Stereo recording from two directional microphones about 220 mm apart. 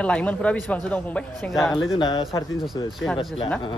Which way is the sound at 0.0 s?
5° left (ahead or behind).